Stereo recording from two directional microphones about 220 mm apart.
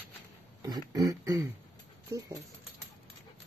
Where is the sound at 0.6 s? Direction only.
15° right (ahead or behind).